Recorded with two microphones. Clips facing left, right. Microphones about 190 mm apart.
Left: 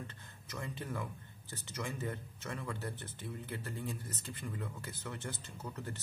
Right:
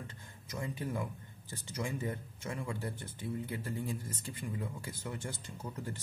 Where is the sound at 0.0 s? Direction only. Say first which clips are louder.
Even; 15° right (ahead or behind).